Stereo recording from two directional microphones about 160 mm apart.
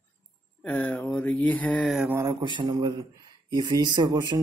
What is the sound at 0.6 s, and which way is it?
Speech, 10° left (ahead or behind).